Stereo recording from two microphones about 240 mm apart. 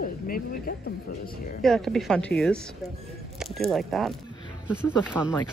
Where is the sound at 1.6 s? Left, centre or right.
Centre.